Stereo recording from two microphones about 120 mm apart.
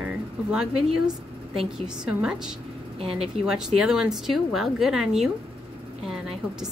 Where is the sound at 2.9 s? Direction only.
55° right (ahead or behind).